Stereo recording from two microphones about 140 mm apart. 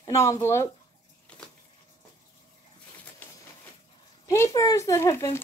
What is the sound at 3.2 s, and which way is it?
Printer, 15° left (ahead or behind).